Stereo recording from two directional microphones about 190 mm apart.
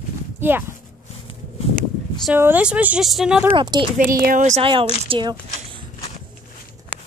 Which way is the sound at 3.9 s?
45° right (ahead or behind).